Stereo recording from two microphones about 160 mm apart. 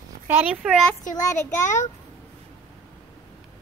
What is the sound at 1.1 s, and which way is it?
Speech, 20° left (ahead or behind).